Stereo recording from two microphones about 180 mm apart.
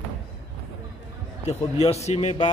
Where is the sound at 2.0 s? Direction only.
40° left (ahead or behind).